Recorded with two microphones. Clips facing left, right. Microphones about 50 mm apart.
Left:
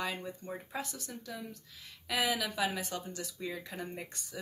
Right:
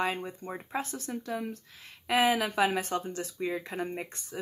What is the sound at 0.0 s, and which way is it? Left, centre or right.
A woman's voice, right.